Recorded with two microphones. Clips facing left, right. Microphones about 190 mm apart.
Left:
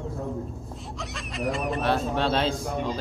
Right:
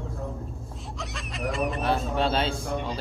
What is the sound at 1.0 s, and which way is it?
Speech, centre (ahead or behind).